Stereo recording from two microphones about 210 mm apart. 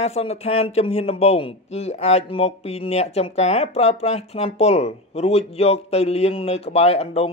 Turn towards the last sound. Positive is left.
turn(degrees=30)  # may be behind; listen again after turning